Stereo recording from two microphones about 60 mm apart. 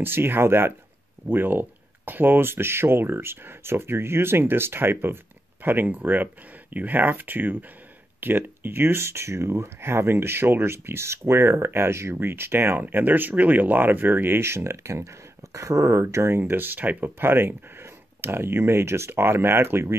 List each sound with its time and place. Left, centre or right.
0.0 s speech: right